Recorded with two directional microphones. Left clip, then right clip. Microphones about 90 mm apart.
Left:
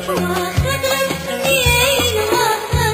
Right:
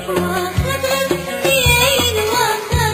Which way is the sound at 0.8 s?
20° right (ahead or behind).